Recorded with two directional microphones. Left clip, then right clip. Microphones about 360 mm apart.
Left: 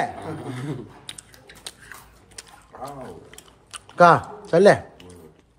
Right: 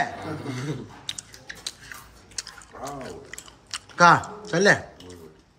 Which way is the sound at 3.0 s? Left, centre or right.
Centre.